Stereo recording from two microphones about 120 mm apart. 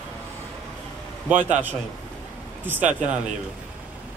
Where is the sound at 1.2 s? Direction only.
15° right (ahead or behind).